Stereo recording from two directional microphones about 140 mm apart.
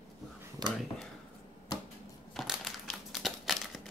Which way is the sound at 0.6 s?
30° right (ahead or behind).